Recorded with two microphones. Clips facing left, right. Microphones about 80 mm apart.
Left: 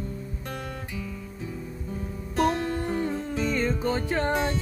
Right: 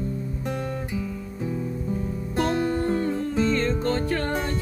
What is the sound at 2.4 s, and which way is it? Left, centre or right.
Music, centre.